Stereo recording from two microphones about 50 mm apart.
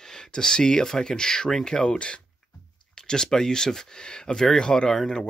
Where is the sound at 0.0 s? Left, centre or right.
Centre.